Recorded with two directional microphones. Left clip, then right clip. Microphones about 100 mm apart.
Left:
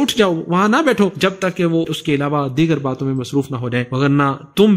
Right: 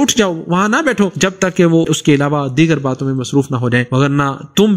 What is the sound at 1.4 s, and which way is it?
Speech, 40° right (ahead or behind).